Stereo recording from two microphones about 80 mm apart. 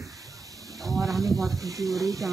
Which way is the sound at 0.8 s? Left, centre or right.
Right.